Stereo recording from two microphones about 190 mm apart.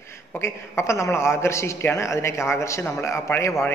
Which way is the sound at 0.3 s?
15° left (ahead or behind).